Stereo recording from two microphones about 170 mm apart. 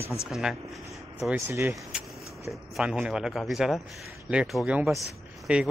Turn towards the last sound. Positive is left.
turn(degrees=-5)  # may be behind; listen again after turning